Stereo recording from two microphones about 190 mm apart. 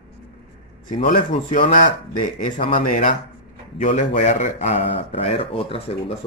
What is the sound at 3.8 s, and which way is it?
Speech, 40° left (ahead or behind).